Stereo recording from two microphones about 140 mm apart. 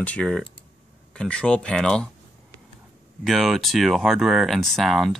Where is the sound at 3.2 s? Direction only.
Centre (ahead or behind).